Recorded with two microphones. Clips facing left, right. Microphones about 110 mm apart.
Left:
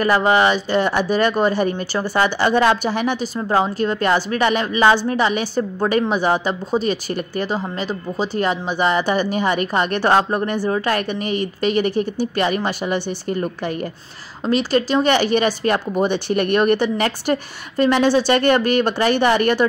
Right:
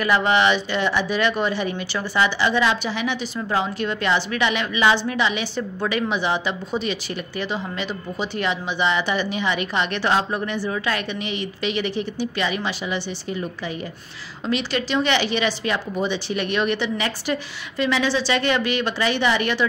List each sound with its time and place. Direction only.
0.0 s a woman's voice: 40° left (ahead or behind)
3.3 s a woman's voice: 35° left (ahead or behind)